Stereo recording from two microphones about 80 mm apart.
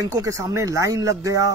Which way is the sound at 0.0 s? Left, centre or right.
Right.